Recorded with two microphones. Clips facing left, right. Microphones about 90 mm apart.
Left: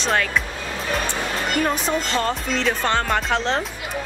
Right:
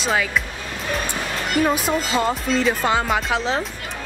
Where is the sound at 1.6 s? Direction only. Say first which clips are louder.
Right 4 dB; 5° right (ahead or behind).